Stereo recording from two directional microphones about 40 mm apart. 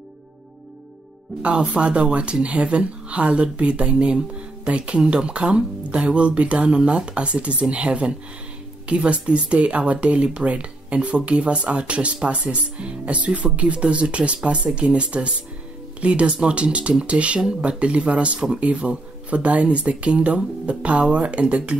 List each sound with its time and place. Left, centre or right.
1.4 s speech: right